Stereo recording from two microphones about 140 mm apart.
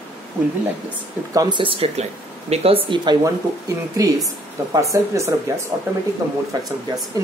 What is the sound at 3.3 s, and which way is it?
Speech, 25° right (ahead or behind).